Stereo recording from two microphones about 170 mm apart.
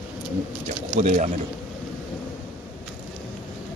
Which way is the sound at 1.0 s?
45° right (ahead or behind).